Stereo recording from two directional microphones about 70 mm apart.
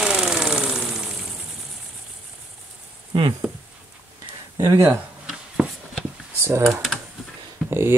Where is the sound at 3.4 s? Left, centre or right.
Centre.